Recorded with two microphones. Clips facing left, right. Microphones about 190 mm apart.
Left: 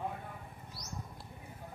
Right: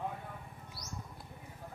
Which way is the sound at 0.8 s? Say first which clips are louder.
Even; 10° right (ahead or behind).